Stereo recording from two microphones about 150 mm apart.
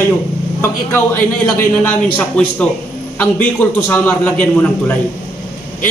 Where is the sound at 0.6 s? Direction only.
10° left (ahead or behind).